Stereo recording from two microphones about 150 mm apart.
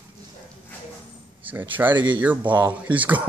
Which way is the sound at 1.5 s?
10° right (ahead or behind).